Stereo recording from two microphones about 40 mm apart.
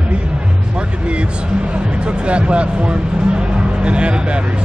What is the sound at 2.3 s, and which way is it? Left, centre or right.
Speech, right.